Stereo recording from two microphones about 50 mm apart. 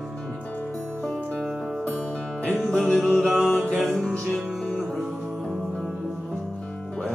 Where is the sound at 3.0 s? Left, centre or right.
Centre.